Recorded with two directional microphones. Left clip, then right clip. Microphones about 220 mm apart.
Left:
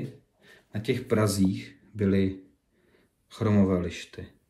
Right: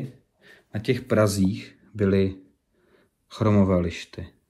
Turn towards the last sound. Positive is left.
turn(degrees=-10)  # may be behind; listen again after turning